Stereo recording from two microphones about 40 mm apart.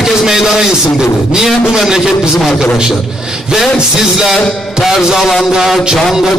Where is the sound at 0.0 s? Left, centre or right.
Centre.